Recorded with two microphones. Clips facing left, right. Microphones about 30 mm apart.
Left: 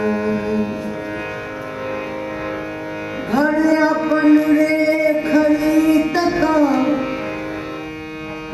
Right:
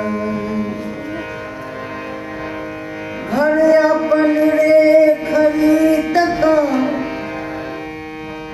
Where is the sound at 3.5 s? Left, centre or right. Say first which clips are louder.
Right 7 dB; right.